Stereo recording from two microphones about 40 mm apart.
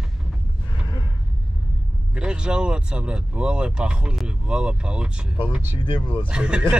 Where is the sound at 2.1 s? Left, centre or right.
Right.